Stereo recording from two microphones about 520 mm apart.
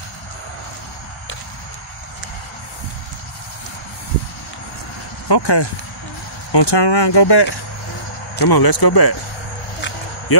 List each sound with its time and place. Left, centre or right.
5.3 s speech: left